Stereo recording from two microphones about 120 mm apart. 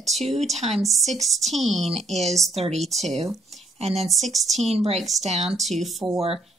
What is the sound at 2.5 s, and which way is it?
Speech, 60° right (ahead or behind).